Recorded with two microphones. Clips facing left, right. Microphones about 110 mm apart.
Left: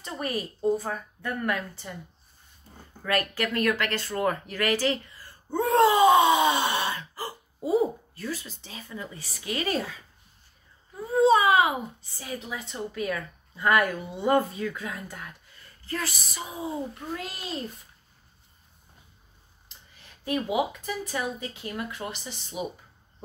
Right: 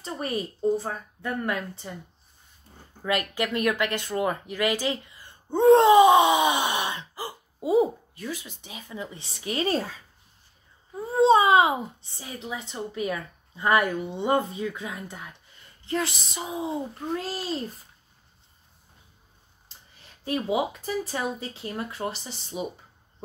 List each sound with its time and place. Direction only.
0.0 s a child's voice: 30° right (ahead or behind)
3.0 s speech: 20° right (ahead or behind)
11.0 s a child's voice: 30° right (ahead or behind)
20.2 s speech: 30° right (ahead or behind)